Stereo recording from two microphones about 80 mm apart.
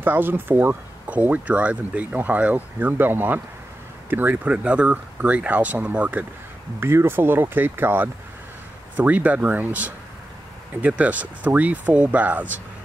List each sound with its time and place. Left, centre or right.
0.0 s speech: right